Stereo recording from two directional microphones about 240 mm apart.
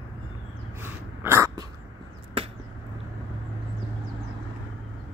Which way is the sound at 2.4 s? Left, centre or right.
Right.